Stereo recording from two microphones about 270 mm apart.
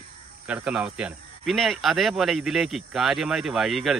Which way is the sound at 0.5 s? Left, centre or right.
Centre.